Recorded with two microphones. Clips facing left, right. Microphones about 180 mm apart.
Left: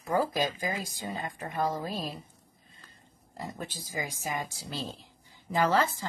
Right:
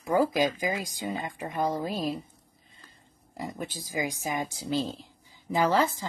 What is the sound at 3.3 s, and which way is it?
A woman's voice, 15° right (ahead or behind).